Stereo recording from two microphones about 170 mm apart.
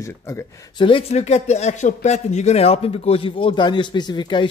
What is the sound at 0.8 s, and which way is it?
Speech, 35° left (ahead or behind).